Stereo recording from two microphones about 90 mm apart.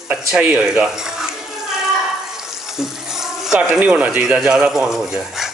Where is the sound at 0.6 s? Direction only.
5° right (ahead or behind).